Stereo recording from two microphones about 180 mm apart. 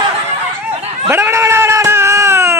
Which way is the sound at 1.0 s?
10° right (ahead or behind).